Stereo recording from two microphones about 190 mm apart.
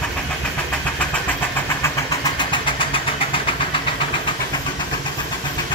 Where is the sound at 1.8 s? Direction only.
20° left (ahead or behind).